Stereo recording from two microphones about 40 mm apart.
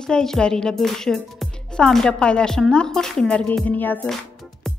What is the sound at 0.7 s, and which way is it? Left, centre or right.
Speech, centre.